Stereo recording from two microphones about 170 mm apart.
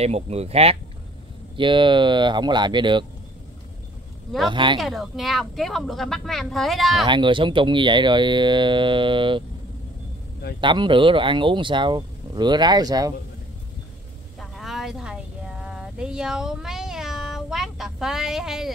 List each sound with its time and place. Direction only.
0.0 s speech: 40° right (ahead or behind)
4.5 s speech: 30° right (ahead or behind)
4.7 s speech: centre (ahead or behind)
7.1 s speech: 30° right (ahead or behind)
10.6 s speech: 30° right (ahead or behind)
14.4 s a sound: centre (ahead or behind)